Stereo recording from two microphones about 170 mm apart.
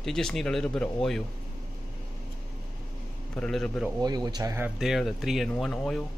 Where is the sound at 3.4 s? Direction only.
Centre (ahead or behind).